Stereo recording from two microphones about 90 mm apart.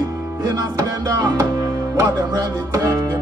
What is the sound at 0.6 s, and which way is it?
Music, 40° right (ahead or behind).